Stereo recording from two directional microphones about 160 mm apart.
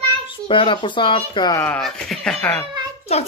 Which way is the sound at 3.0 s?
40° left (ahead or behind).